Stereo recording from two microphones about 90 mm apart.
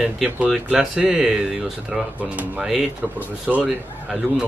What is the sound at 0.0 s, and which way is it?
Speech, 10° right (ahead or behind).